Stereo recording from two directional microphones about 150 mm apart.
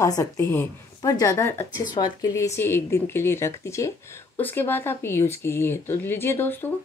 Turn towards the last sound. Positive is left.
turn(degrees=15)  # may be behind; listen again after turning